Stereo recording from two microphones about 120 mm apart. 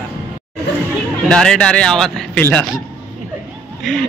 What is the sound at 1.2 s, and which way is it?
A man's voice, 5° left (ahead or behind).